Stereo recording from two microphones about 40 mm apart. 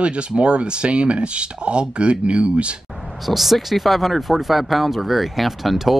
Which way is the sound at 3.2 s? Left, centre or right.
Centre.